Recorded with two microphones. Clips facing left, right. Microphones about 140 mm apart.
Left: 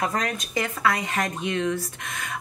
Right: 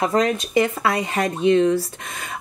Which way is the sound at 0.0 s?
30° right (ahead or behind).